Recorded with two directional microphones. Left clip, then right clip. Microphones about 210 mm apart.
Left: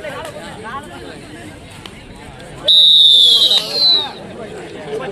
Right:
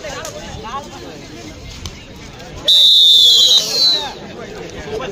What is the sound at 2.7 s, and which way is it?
Fire alarm, 45° right (ahead or behind).